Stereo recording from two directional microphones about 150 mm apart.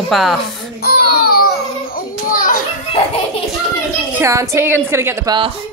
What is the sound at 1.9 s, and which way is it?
Children playing, 65° left (ahead or behind).